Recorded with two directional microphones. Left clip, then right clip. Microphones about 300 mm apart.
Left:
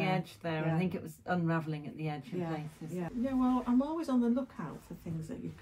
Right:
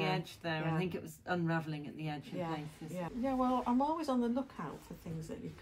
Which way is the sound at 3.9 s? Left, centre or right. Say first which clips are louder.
Left 3 dB; centre.